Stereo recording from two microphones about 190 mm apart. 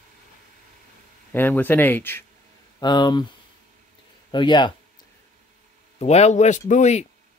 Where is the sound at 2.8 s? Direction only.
20° left (ahead or behind).